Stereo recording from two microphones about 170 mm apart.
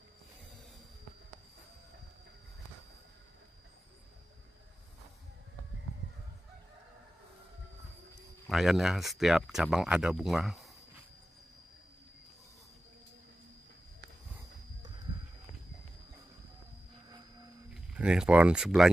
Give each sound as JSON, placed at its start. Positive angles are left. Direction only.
{"t": 8.5, "sound": "speech", "side_deg": 0}
{"t": 17.9, "sound": "speech", "side_deg": -5}